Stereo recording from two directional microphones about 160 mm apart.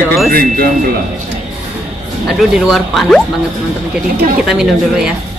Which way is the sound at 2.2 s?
5° right (ahead or behind).